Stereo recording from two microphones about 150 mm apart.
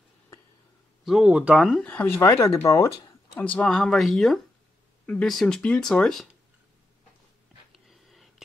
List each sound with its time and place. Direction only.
1.0 s speech: 5° right (ahead or behind)
1.9 s speech: 15° left (ahead or behind)
3.3 s speech: 10° left (ahead or behind)